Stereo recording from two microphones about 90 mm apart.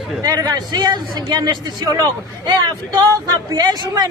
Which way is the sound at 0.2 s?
45° right (ahead or behind).